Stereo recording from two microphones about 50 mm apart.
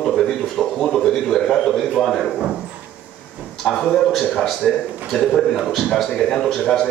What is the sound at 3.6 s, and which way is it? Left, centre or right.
A man's voice, centre.